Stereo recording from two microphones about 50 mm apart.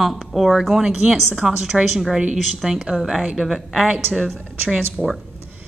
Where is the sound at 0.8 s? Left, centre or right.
Centre.